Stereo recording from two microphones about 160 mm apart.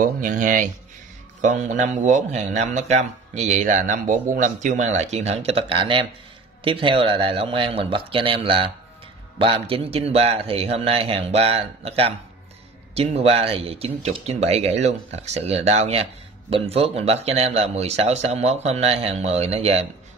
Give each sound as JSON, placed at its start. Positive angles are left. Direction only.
{"t": 0.0, "sound": "a man's voice", "side_deg": -55}